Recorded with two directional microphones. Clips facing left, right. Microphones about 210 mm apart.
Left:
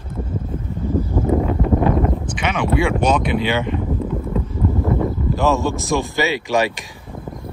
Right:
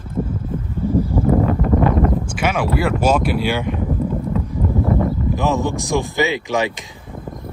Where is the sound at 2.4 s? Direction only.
5° right (ahead or behind).